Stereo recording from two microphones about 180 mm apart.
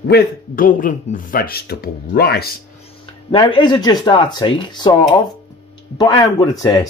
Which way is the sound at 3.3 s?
30° left (ahead or behind).